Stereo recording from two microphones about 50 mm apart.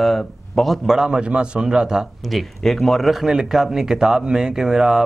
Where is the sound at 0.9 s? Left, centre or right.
Centre.